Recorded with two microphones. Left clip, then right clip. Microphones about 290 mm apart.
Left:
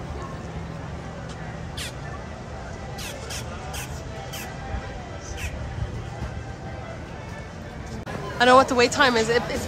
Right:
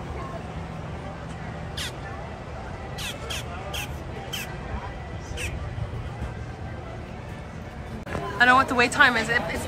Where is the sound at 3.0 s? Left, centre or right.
Centre.